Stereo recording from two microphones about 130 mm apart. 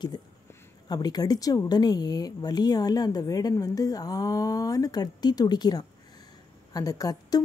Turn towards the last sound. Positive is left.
turn(degrees=30)  # may be behind; listen again after turning